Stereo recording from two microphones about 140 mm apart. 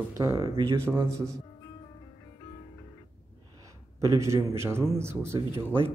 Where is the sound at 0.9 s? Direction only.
20° right (ahead or behind).